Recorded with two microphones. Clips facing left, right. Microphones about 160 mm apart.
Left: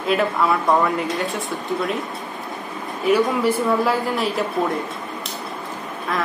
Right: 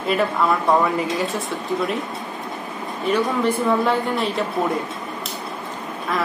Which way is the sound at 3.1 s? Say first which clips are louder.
Left 2 dB; 5° left (ahead or behind).